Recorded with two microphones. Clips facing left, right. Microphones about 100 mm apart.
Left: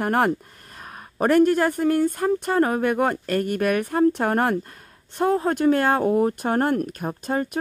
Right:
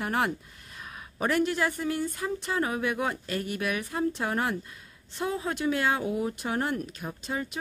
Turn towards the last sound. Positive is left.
turn(degrees=50)  # may be behind; listen again after turning